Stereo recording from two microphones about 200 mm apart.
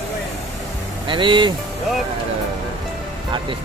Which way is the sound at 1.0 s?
25° right (ahead or behind).